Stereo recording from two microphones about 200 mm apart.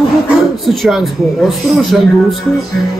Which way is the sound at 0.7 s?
Centre (ahead or behind).